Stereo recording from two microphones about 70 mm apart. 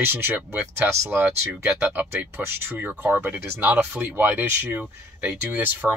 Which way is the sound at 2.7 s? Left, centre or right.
Right.